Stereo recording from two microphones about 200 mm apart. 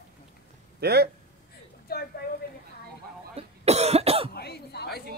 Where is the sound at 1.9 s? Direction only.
50° left (ahead or behind).